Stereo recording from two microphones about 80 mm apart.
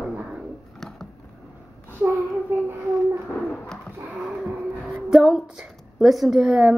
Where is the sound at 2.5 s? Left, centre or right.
Right.